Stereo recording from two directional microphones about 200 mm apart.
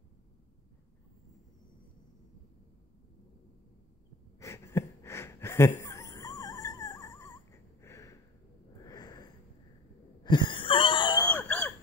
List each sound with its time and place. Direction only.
4.4 s wheeze: 15° left (ahead or behind)
8.8 s a sound: 20° left (ahead or behind)
10.2 s wheeze: 25° left (ahead or behind)
11.2 s screaming: 10° left (ahead or behind)